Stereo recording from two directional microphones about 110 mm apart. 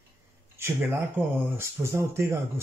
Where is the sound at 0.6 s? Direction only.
25° right (ahead or behind).